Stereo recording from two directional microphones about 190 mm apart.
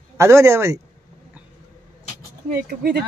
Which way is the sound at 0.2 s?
15° right (ahead or behind).